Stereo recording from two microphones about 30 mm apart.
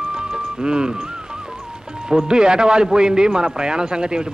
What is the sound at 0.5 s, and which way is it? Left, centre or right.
Speech, right.